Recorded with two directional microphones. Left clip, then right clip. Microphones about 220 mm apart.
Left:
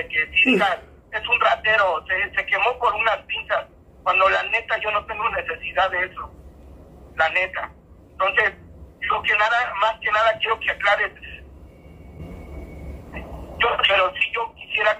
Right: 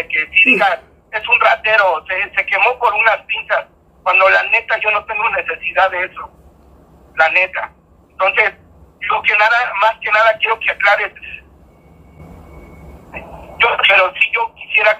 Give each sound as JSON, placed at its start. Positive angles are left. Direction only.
{"t": 0.0, "sound": "speech", "side_deg": -30}
{"t": 0.3, "sound": "a sound", "side_deg": 5}
{"t": 0.6, "sound": "speech", "side_deg": -30}
{"t": 13.1, "sound": "speech", "side_deg": -30}